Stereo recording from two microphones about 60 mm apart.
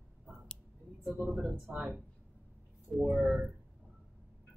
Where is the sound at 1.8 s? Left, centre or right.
Centre.